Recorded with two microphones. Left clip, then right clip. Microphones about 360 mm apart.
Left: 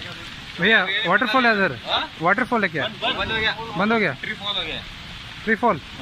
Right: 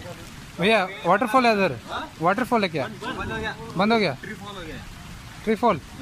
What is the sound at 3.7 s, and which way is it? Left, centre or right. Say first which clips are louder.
Speech: right 1 dB; centre.